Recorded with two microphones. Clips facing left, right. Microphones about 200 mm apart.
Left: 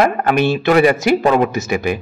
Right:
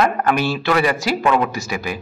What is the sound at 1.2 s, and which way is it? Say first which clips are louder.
Speech: left 4 dB; 35° left (ahead or behind).